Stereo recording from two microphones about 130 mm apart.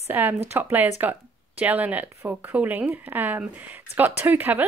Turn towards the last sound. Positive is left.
turn(degrees=-15)  # may be behind; listen again after turning